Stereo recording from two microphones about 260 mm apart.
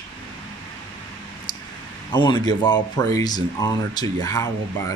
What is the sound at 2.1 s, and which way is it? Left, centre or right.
Speech, centre.